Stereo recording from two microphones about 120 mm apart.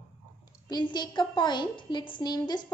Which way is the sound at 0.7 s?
35° left (ahead or behind).